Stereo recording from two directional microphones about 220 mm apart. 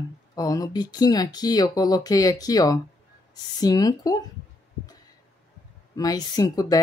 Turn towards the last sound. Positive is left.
turn(degrees=15)  # may be behind; listen again after turning